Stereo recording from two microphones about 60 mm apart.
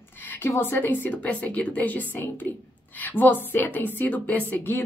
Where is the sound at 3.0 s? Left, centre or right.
Left.